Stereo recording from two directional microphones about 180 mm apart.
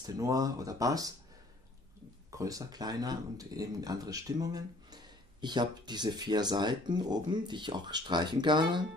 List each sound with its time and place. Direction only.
0.0 s speech: 20° right (ahead or behind)
2.3 s speech: 20° right (ahead or behind)